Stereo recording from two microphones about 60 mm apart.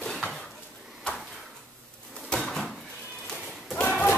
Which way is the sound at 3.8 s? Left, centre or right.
Left.